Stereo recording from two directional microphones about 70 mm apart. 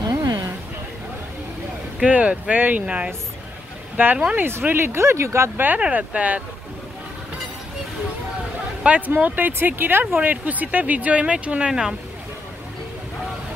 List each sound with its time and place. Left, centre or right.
0.1 s a sound: right
2.0 s speech: centre
4.5 s speech: right
5.8 s speech: centre
8.8 s speech: right